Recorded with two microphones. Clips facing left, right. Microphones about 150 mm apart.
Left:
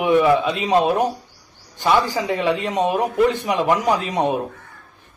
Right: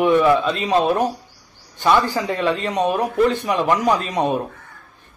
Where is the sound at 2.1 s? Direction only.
15° left (ahead or behind).